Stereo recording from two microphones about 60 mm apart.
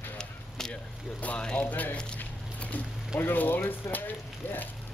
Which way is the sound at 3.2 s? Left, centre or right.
Left.